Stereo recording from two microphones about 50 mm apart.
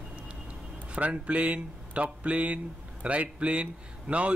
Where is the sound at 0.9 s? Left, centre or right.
Right.